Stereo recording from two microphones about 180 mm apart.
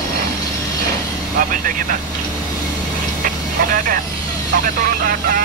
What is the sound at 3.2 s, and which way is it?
Vehicle, 50° right (ahead or behind).